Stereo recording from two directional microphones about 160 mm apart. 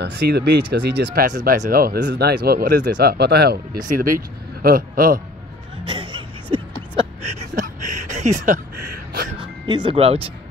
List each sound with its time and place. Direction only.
0.0 s speech: 90° right
3.8 s speech: 60° right (ahead or behind)
5.9 s music: 30° right (ahead or behind)
7.0 s a sound: 40° right (ahead or behind)
9.1 s music: 75° right (ahead or behind)
9.4 s speech: 30° right (ahead or behind)